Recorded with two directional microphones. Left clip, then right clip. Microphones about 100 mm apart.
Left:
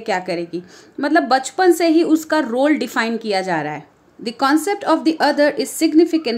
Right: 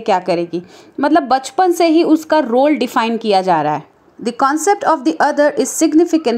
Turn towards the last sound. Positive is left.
turn(degrees=-30)  # may be behind; listen again after turning